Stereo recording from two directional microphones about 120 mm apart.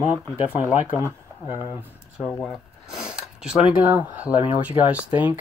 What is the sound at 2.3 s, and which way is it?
Speech, 20° left (ahead or behind).